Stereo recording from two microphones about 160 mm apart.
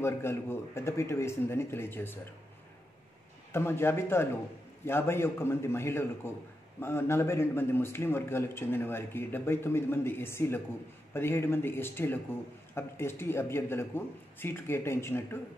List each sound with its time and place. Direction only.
0.0 s a man's voice: 15° left (ahead or behind)
3.5 s a man's voice: 15° left (ahead or behind)